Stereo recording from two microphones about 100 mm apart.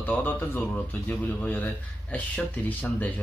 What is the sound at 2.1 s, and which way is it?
Speech, 15° left (ahead or behind).